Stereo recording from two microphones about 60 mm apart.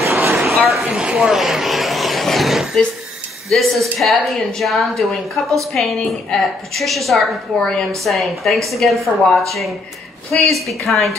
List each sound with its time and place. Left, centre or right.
0.3 s a sound: centre
0.9 s vehicle: centre
3.4 s a woman's voice: centre
10.3 s a woman's voice: centre